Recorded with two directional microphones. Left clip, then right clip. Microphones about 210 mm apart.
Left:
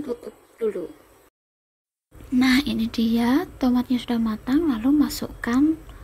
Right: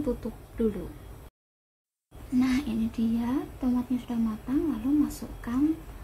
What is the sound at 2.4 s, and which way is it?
Speech, 30° left (ahead or behind).